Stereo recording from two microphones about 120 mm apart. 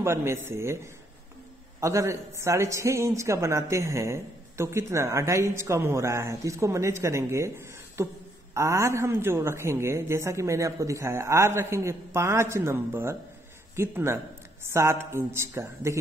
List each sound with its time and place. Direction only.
0.0 s a man's voice: 20° right (ahead or behind)
1.8 s a man's voice: 25° right (ahead or behind)